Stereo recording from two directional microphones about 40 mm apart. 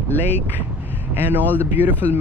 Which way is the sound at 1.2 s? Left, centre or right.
Right.